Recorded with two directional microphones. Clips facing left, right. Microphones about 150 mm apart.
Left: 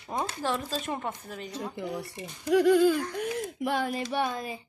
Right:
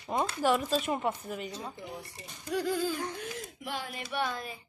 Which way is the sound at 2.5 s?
70° left (ahead or behind).